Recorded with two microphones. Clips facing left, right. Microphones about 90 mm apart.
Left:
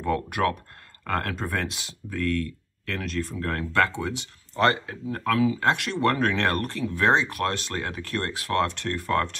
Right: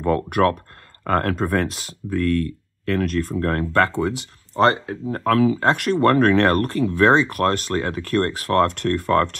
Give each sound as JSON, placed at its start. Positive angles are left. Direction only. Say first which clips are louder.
{"t": 0.0, "sound": "speech", "louder": "right 6 dB", "side_deg": -50}